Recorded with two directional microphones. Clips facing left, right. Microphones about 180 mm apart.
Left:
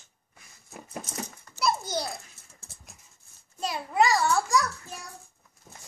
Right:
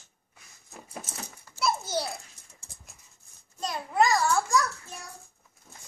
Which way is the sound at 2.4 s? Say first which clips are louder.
Left 1 dB; 15° right (ahead or behind).